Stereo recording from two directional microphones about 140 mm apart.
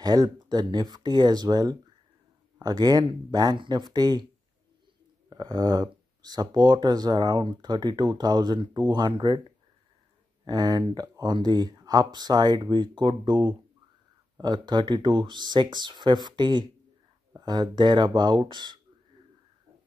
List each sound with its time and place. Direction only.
0.0 s speech: 30° right (ahead or behind)
5.3 s speech: 30° right (ahead or behind)
10.4 s speech: 30° right (ahead or behind)